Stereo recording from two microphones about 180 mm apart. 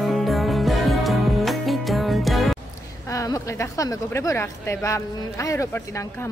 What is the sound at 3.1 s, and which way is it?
A woman's voice, 15° left (ahead or behind).